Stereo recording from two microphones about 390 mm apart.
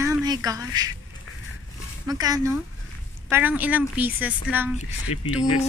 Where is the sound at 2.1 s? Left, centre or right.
Centre.